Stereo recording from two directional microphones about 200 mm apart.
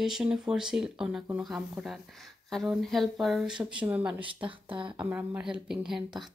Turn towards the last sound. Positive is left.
turn(degrees=0)  # may be behind; listen again after turning